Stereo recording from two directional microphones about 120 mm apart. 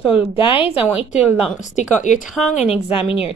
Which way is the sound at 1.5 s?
90° left.